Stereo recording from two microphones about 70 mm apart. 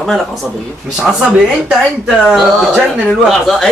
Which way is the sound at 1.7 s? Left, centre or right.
Centre.